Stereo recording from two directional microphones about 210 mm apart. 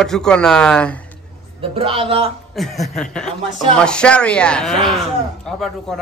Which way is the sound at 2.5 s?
Centre (ahead or behind).